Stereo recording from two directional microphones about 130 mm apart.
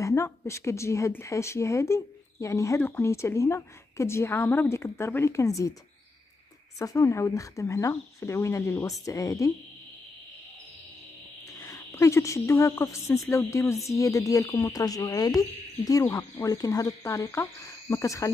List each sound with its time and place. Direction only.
0.0 s a woman's voice: 20° left (ahead or behind)
6.8 s a woman's voice: 25° left (ahead or behind)
11.6 s a woman's voice: 25° left (ahead or behind)